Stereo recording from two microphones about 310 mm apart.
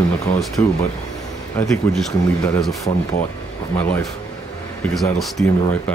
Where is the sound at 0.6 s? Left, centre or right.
Centre.